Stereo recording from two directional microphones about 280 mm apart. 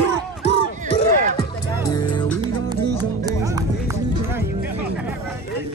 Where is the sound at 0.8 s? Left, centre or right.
Centre.